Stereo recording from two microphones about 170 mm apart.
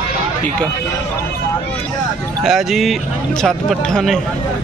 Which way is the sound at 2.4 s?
Centre (ahead or behind).